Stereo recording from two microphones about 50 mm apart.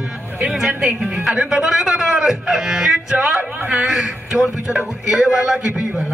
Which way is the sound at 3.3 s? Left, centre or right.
Right.